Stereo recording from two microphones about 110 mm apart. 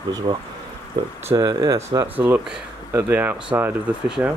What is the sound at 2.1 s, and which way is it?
Speech, 15° right (ahead or behind).